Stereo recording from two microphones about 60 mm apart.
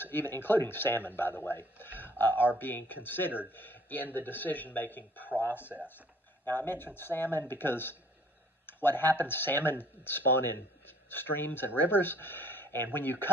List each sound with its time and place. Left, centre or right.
0.0 s a man's voice: left